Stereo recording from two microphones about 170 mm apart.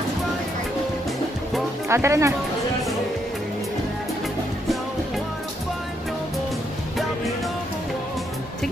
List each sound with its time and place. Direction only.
1.9 s speech: 15° right (ahead or behind)